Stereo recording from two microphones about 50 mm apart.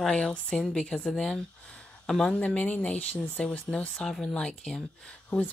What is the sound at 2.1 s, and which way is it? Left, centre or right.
Speech, centre.